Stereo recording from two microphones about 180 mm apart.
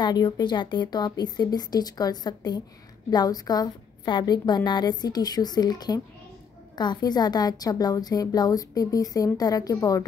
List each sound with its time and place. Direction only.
0.0 s a woman's voice: 25° left (ahead or behind)